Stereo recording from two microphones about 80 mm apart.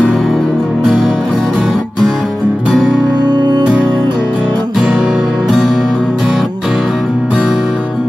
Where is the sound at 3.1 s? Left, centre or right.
Right.